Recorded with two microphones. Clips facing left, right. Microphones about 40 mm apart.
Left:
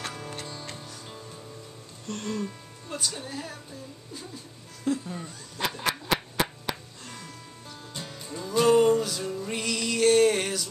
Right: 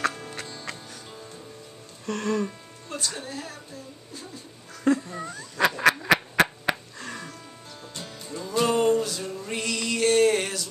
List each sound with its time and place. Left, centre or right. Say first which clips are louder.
2.0 s music: right 6 dB; right
3.2 s a woman's voice: right 1 dB; centre
4.8 s cat: right 6 dB; right
5.8 s a sound: right 7 dB; right
7.9 s music: right 1 dB; centre